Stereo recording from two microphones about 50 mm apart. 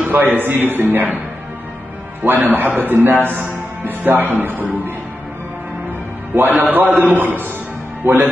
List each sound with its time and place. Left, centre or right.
0.0 s a man's voice: right
2.2 s a man's voice: right
6.3 s a man's voice: right
6.7 s a man's voice: right